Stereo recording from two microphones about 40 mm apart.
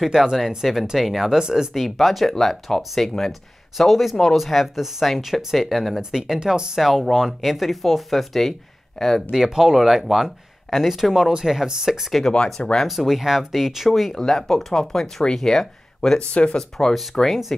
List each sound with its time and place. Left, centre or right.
0.1 s speech: centre
1.4 s speech: centre
1.7 s speech: centre
5.9 s speech: centre
6.8 s speech: centre
9.3 s speech: centre
14.1 s speech: centre
16.2 s speech: left
16.5 s speech: centre